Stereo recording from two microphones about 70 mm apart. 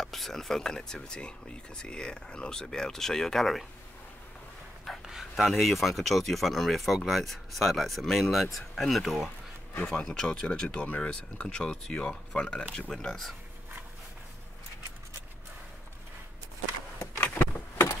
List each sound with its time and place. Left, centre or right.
0.0 s speech: centre
5.0 s speech: centre
9.8 s speech: centre
12.9 s speech: centre
17.2 s a sound: left